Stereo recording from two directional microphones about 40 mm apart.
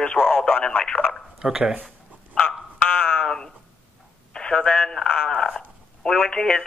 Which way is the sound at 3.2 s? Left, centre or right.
Centre.